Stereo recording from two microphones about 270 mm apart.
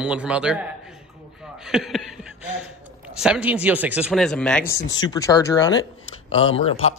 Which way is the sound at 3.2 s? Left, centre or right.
Centre.